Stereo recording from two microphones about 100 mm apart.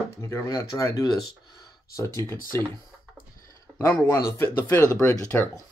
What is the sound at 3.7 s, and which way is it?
Speech, 20° left (ahead or behind).